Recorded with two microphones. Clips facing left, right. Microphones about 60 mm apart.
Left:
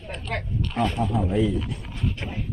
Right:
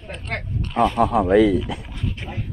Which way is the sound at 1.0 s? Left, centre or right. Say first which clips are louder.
Right 11 dB; right.